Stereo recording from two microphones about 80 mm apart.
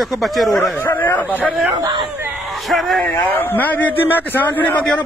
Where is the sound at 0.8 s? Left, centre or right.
Left.